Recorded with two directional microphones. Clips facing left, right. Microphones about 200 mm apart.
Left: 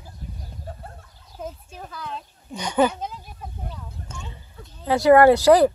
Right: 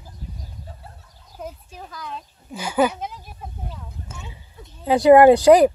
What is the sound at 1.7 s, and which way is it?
Speech, centre (ahead or behind).